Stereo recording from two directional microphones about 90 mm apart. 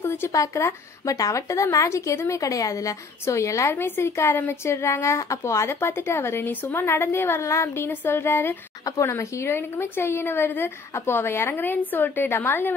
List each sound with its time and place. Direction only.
0.0 s a sound: 25° left (ahead or behind)
0.3 s a woman's voice: 35° left (ahead or behind)
8.8 s a woman's voice: 40° left (ahead or behind)
9.1 s speech: 30° left (ahead or behind)